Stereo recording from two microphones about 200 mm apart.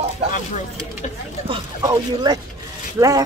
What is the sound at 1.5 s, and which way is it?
Speech, 20° right (ahead or behind).